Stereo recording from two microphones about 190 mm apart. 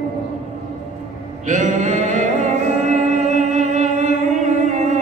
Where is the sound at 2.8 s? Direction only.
40° right (ahead or behind).